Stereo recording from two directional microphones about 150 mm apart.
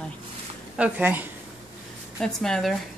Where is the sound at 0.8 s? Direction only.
10° right (ahead or behind).